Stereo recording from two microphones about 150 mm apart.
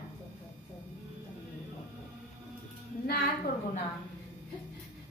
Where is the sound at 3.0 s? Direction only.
90° left.